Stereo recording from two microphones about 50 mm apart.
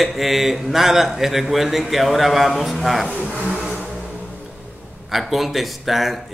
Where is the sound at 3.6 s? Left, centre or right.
Centre.